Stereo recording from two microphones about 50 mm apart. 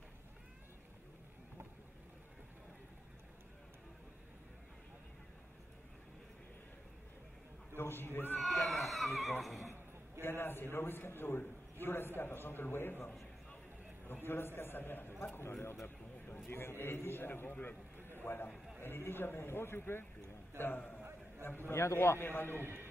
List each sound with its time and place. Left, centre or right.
7.7 s a man's voice: left
8.4 s a sound: centre
9.4 s speech: centre
10.2 s a man's voice: left
18.0 s a sound: left
18.8 s a man's voice: left
21.7 s a man's voice: left
22.6 s a man's voice: right